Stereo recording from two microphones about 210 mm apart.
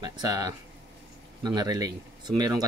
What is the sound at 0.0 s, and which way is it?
Speech, 20° right (ahead or behind).